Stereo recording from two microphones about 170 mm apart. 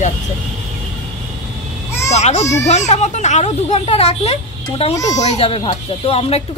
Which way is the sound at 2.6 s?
40° left (ahead or behind).